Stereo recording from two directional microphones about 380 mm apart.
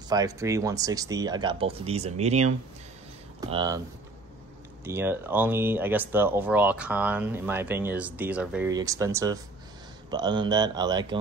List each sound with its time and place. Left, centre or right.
0.1 s speech: centre
4.8 s speech: centre